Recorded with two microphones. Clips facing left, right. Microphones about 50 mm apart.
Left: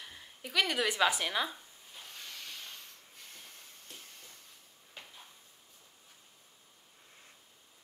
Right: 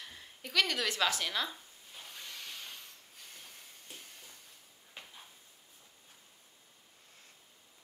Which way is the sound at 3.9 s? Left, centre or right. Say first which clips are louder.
Right 1 dB; centre.